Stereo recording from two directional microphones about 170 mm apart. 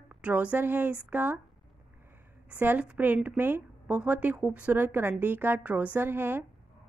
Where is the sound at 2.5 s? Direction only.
10° right (ahead or behind).